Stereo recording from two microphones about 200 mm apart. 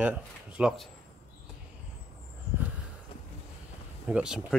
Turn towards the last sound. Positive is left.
turn(degrees=-5)  # may be behind; listen again after turning